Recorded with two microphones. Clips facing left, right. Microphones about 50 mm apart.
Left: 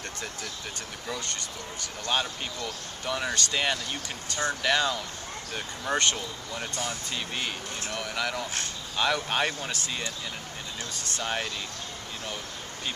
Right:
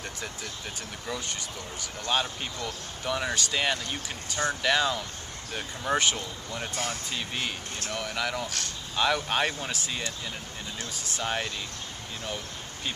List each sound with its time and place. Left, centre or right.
1.1 s speech: centre